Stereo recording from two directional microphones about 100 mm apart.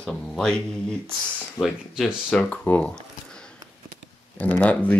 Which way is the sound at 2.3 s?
10° left (ahead or behind).